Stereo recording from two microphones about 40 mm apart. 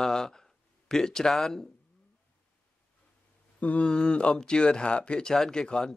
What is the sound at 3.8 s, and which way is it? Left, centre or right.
Speech, left.